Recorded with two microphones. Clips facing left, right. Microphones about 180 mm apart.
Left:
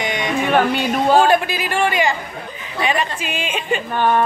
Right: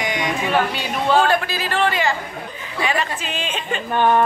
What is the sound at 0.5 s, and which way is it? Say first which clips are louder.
Speech: left 7 dB; 50° left (ahead or behind).